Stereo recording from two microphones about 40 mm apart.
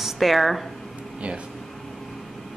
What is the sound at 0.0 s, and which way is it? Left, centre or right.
Speech, centre.